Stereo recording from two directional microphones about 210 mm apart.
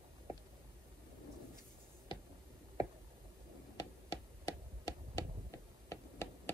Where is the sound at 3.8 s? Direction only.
20° left (ahead or behind).